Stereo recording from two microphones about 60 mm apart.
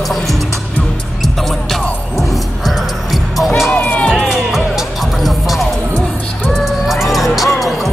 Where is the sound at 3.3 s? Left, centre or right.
Centre.